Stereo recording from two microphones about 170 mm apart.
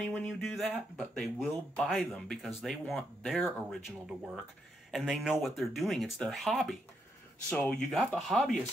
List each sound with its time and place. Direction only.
0.0 s speech: 5° left (ahead or behind)
4.9 s speech: 5° right (ahead or behind)